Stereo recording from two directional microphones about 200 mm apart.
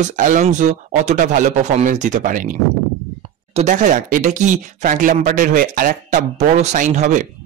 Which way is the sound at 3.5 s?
40° right (ahead or behind).